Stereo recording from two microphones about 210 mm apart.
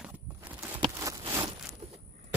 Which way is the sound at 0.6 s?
15° right (ahead or behind).